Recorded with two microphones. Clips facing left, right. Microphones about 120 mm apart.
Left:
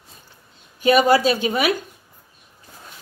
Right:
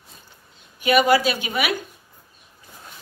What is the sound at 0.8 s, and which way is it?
Speech, 35° left (ahead or behind).